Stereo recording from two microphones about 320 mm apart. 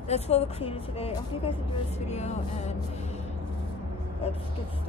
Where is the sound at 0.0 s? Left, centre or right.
Centre.